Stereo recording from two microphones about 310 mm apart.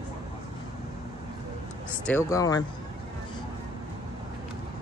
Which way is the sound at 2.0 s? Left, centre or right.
Centre.